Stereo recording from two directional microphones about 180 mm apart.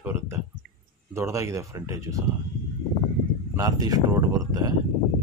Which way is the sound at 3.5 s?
20° right (ahead or behind).